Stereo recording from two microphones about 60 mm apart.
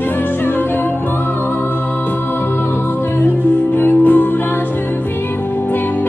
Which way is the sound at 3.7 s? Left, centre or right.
Left.